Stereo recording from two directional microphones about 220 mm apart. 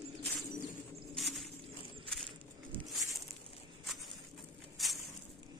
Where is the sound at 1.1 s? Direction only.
Centre (ahead or behind).